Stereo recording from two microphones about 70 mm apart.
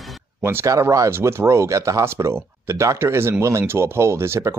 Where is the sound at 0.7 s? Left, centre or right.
Right.